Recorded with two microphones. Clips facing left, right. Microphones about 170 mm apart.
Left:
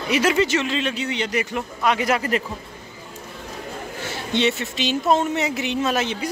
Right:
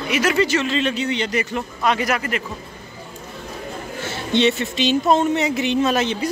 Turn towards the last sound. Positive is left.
turn(degrees=5)  # may be behind; listen again after turning